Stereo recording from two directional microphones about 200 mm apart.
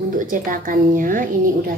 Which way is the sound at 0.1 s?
40° right (ahead or behind).